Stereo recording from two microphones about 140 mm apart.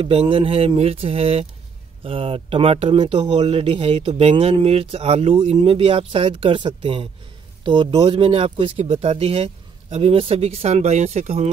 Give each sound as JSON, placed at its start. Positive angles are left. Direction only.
{"t": 0.0, "sound": "speech", "side_deg": -45}